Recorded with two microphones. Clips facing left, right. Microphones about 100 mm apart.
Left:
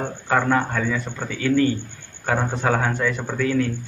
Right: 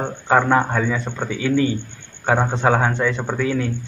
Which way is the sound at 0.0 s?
20° right (ahead or behind).